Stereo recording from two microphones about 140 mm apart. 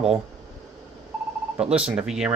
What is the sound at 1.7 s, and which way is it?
Speech, 5° right (ahead or behind).